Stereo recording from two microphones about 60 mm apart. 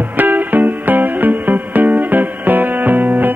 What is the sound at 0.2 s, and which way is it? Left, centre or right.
Music, right.